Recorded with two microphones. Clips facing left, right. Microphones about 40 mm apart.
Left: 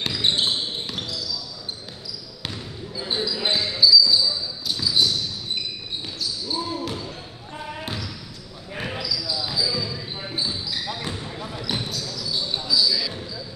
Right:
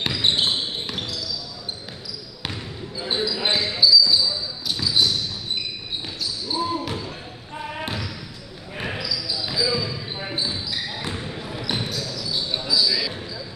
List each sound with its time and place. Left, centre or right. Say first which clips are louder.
0.0 s basketball bounce: right 1 dB; centre
2.4 s basketball bounce: right 2 dB; centre
6.5 s basketball bounce: right 4 dB; centre
10.9 s basketball bounce: even; centre; by 13.2 s right